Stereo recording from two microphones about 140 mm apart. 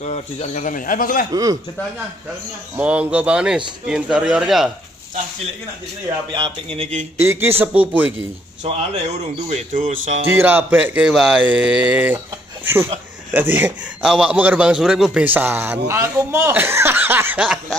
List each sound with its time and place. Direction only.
0.0 s speech: 55° left (ahead or behind); by 1.2 s 85° left
1.3 s a man's voice: 25° right (ahead or behind)
2.7 s a man's voice: 10° right (ahead or behind)
6.3 s speech: 35° right (ahead or behind)
7.2 s a man's voice: 15° right (ahead or behind)
8.6 s speech: 50° right (ahead or behind)
10.3 s a man's voice: 10° right (ahead or behind)
13.3 s a man's voice: 15° right (ahead or behind)